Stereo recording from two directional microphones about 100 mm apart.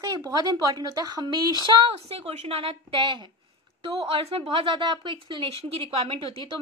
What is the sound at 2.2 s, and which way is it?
Speech, 85° right.